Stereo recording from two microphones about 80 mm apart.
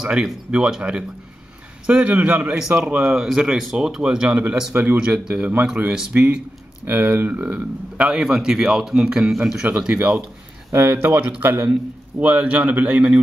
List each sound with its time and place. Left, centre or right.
0.0 s a man's voice: centre
4.7 s a man's voice: right
10.7 s speech: right
12.2 s a man's voice: centre